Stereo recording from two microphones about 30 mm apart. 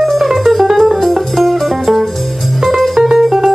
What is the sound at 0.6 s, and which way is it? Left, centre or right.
Music, centre.